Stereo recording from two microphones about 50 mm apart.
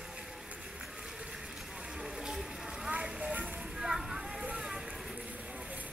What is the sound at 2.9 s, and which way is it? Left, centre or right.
Vehicle, centre.